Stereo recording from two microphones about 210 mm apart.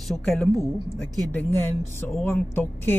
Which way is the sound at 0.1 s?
5° left (ahead or behind).